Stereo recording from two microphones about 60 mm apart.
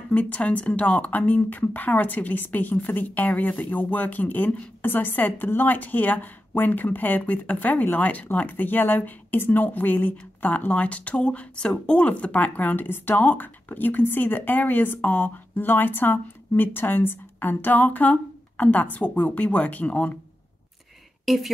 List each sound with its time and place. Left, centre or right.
0.1 s speech: left
21.3 s a woman's voice: centre